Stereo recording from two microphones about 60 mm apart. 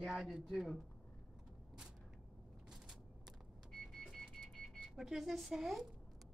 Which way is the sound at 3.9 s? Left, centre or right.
Centre.